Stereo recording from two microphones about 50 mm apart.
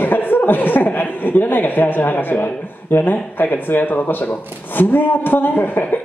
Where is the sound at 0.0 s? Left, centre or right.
Left.